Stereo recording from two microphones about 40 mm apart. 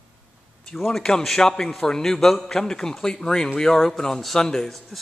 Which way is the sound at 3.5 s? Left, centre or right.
Centre.